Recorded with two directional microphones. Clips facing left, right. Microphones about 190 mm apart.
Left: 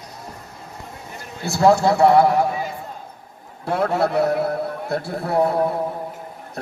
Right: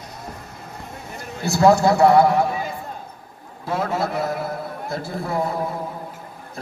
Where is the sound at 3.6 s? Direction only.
65° left (ahead or behind).